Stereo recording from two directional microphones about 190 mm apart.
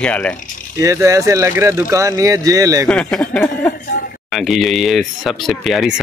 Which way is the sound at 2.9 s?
5° left (ahead or behind).